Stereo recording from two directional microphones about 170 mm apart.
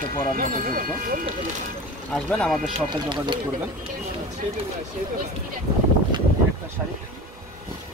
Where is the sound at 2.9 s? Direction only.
25° right (ahead or behind).